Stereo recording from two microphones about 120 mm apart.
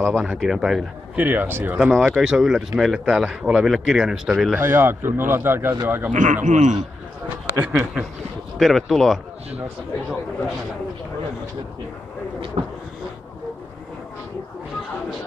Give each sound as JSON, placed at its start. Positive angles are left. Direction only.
{"t": 0.2, "sound": "speech", "side_deg": -5}
{"t": 1.2, "sound": "speech", "side_deg": -15}
{"t": 1.8, "sound": "speech", "side_deg": -5}
{"t": 4.6, "sound": "a man's voice", "side_deg": -20}
{"t": 6.1, "sound": "speech", "side_deg": -90}
{"t": 7.5, "sound": "speech", "side_deg": -15}
{"t": 8.5, "sound": "speech", "side_deg": 0}
{"t": 12.6, "sound": "a sound", "side_deg": -60}